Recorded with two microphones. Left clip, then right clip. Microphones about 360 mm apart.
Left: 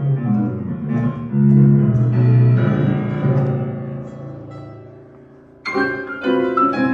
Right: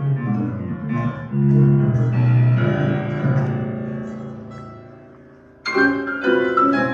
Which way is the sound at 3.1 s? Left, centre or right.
Left.